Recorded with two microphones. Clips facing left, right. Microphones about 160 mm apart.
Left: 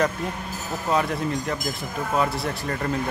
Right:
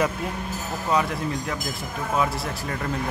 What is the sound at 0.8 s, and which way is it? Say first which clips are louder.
Speech: left 1 dB; centre (ahead or behind).